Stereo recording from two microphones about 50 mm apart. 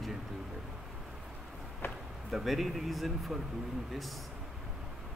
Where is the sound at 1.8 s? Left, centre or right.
Left.